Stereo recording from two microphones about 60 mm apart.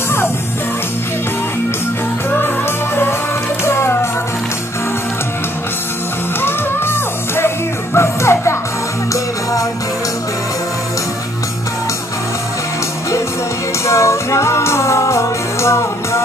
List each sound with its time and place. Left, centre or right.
3.6 s music: left
6.4 s music: left
9.1 s music: left
13.8 s music: left